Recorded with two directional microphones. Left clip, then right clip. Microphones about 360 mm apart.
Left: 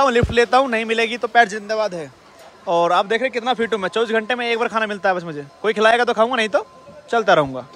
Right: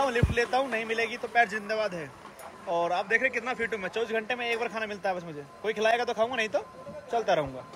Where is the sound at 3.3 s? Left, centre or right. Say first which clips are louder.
Left 10 dB; centre.